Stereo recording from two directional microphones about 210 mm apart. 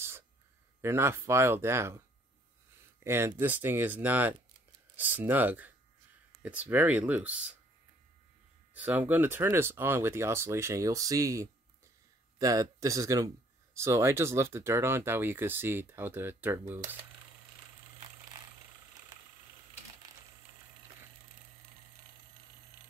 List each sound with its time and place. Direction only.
0.8 s speech: 10° right (ahead or behind)
8.7 s speech: 5° right (ahead or behind)